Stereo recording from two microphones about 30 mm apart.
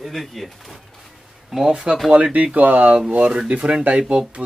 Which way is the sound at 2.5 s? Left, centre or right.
Right.